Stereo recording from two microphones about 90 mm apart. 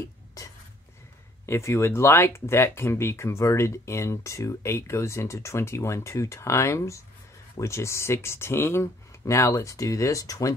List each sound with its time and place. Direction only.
1.4 s speech: 30° left (ahead or behind)